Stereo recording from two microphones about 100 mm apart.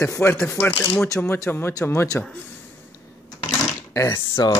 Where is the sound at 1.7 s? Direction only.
35° left (ahead or behind).